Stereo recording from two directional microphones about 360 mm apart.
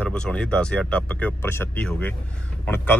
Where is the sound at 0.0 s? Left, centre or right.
Centre.